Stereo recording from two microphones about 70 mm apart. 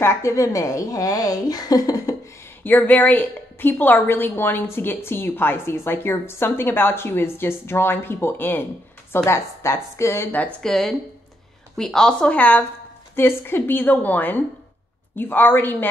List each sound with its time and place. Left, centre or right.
0.0 s a woman's voice: left
2.6 s a woman's voice: left
10.6 s speech: centre; by 12.6 s left
13.1 s a woman's voice: left